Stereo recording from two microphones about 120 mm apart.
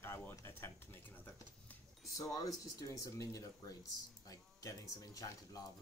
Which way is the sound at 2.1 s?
30° left (ahead or behind).